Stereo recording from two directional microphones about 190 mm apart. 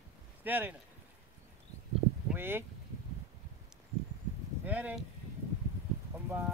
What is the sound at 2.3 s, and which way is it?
Speech, 10° right (ahead or behind).